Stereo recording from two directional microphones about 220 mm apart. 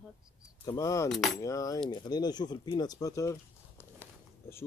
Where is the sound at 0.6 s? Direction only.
15° left (ahead or behind).